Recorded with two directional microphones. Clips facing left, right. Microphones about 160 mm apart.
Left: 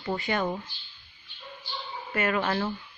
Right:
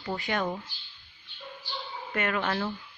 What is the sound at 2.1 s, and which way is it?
Speech, 5° left (ahead or behind).